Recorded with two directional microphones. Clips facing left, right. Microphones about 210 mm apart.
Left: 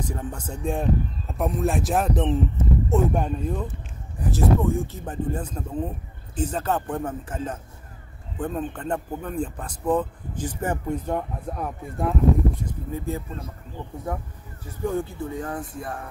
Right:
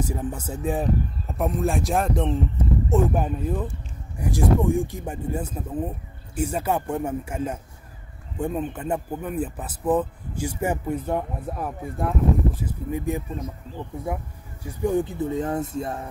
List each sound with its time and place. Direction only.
0.0 s a man's voice: 5° right (ahead or behind)
12.9 s a man's voice: 15° right (ahead or behind)